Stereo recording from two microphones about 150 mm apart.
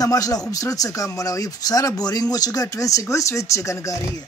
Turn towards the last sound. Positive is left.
turn(degrees=20)  # may be behind; listen again after turning